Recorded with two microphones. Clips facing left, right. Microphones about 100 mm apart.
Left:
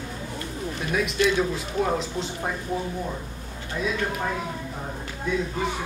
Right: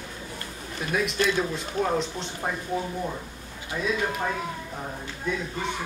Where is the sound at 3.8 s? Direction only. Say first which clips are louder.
Left 1 dB; centre (ahead or behind).